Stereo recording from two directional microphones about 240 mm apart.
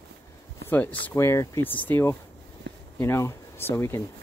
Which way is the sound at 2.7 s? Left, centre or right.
Right.